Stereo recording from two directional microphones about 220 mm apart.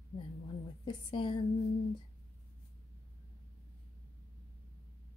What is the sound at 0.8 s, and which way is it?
Speech, 20° left (ahead or behind).